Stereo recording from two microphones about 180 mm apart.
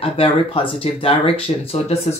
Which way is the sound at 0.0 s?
30° left (ahead or behind).